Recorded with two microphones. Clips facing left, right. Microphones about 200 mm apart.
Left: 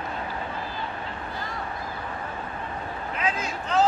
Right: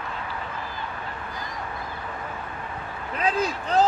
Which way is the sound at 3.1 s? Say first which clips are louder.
Right 5 dB; 35° right (ahead or behind).